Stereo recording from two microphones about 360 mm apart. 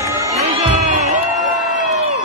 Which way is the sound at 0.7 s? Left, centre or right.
Centre.